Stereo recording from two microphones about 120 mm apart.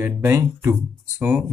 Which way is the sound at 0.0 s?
20° right (ahead or behind).